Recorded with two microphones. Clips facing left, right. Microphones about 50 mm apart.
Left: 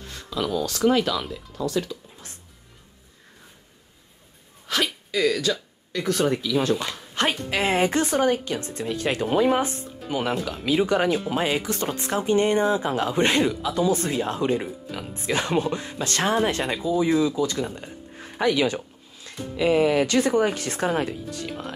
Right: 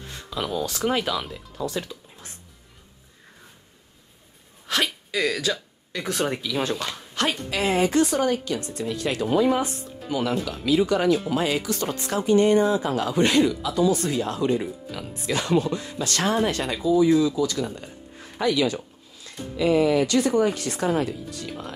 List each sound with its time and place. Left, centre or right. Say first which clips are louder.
0.3 s speech: left 2 dB; centre
4.6 s speech: even; centre
6.7 s speech: left 4 dB; centre
7.2 s speech: left 1 dB; left